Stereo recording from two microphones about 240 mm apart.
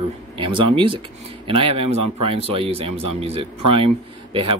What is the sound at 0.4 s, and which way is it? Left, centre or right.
Speech, right.